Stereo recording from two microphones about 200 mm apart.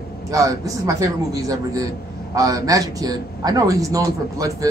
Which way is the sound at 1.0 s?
15° right (ahead or behind).